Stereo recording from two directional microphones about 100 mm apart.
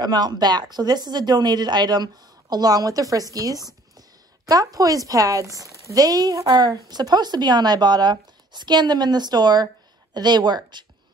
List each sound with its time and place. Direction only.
0.0 s speech: 45° right (ahead or behind)